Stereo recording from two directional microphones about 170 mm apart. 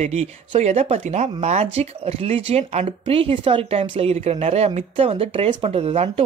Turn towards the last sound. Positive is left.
turn(degrees=-35)  # may be behind; listen again after turning